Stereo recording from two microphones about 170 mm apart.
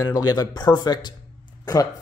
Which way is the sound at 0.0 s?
20° left (ahead or behind).